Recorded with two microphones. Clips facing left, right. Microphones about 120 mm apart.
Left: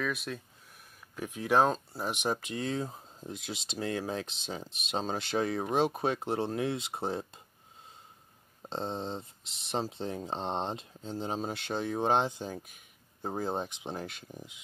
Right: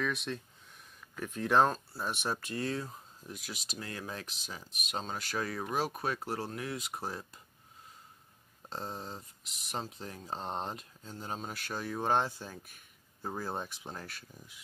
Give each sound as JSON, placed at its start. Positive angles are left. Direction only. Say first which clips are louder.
{"t": 0.0, "sound": "speech", "louder": "left 1 dB", "side_deg": 0}
{"t": 1.1, "sound": "speech", "louder": "left 1 dB", "side_deg": 15}
{"t": 8.6, "sound": "speech", "louder": "left 6 dB", "side_deg": 25}
{"t": 12.6, "sound": "a sound", "louder": "left 1 dB", "side_deg": 15}
{"t": 13.4, "sound": "speech", "louder": "left 6 dB", "side_deg": 20}